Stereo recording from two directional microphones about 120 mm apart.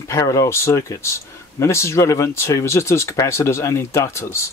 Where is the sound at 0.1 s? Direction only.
25° left (ahead or behind).